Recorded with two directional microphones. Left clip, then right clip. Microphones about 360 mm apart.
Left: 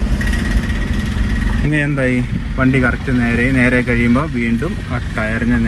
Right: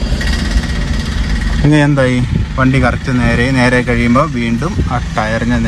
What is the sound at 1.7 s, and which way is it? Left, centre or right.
Speech, right.